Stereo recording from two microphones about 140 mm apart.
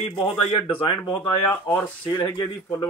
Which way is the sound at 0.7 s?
15° left (ahead or behind).